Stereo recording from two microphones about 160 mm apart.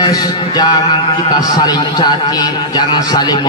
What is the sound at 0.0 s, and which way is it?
A man's voice, 25° left (ahead or behind).